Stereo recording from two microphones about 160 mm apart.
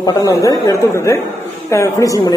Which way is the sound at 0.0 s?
20° left (ahead or behind).